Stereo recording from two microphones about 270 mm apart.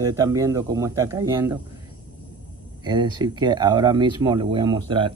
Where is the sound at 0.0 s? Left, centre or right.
Centre.